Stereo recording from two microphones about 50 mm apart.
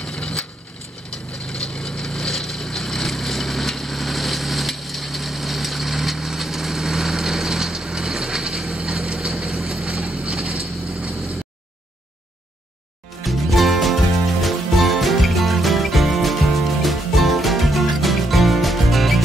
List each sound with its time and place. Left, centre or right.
0.0 s wood: left
1.1 s vehicle: centre
9.8 s vehicle: right
13.2 s music: centre